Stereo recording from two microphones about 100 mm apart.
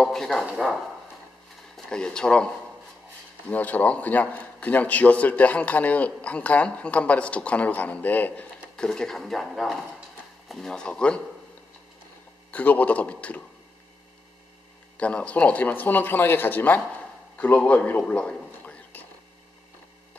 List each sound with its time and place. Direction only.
0.0 s speech: 5° left (ahead or behind)
1.9 s a man's voice: 10° left (ahead or behind)
12.4 s a man's voice: 15° left (ahead or behind)
15.0 s a man's voice: 10° left (ahead or behind)
17.4 s a sound: 15° left (ahead or behind)